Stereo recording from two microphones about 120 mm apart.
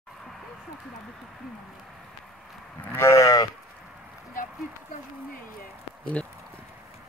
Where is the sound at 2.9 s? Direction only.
25° left (ahead or behind).